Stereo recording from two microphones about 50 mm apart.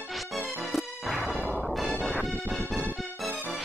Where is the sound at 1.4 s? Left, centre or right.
Centre.